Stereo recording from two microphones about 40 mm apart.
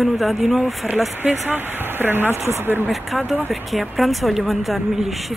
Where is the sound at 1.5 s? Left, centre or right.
Right.